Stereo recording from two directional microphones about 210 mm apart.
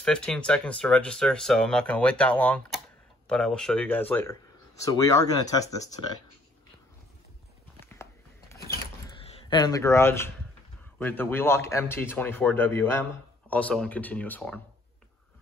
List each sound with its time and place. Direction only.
0.0 s speech: 5° left (ahead or behind)
7.8 s a sound: 10° left (ahead or behind)
9.2 s speech: 25° left (ahead or behind); by 14.6 s 10° left (ahead or behind)